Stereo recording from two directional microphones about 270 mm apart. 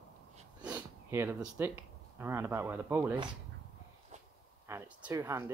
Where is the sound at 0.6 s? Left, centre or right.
Centre.